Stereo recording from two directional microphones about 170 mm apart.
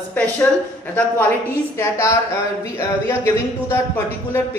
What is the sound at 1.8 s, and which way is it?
Speech, 15° left (ahead or behind).